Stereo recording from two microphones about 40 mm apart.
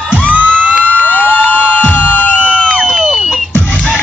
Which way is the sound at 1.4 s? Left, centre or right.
Right.